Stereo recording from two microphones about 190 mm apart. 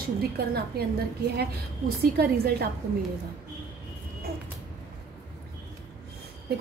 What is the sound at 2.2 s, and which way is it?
Speech, 55° right (ahead or behind).